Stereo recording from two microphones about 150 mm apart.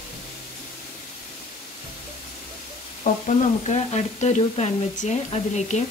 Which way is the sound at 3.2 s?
45° left (ahead or behind).